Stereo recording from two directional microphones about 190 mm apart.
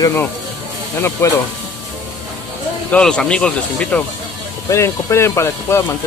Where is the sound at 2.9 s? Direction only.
5° left (ahead or behind).